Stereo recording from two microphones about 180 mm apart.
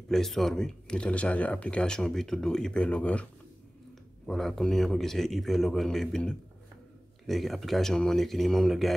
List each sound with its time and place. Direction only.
0.1 s speech: centre (ahead or behind)
4.3 s speech: centre (ahead or behind)